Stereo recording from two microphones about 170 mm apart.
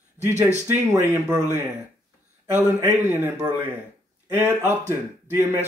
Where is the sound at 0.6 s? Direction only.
15° right (ahead or behind).